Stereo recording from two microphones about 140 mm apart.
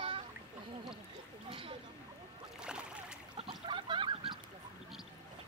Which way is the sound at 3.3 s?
35° right (ahead or behind).